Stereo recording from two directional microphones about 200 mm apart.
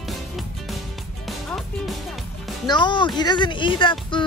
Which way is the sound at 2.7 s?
25° left (ahead or behind).